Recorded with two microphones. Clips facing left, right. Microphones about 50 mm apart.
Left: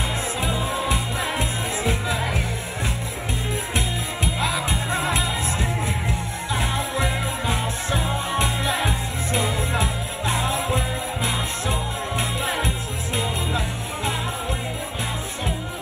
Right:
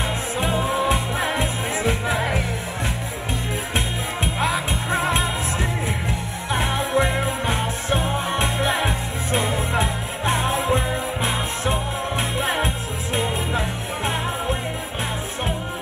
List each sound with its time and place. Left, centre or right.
0.4 s music: right
3.7 s music: right